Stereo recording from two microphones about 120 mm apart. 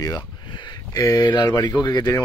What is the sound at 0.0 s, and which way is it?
Speech, 35° left (ahead or behind).